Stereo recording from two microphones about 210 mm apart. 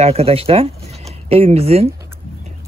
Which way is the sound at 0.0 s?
30° right (ahead or behind).